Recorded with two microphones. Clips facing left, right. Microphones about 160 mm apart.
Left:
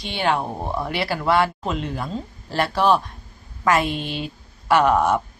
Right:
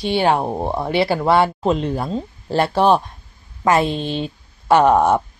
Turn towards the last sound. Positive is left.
turn(degrees=-35)  # may be behind; listen again after turning